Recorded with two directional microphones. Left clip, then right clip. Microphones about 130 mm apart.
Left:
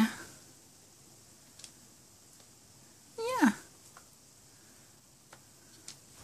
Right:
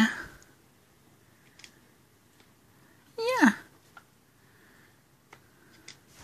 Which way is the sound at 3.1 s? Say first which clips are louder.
Right 5 dB; 20° right (ahead or behind).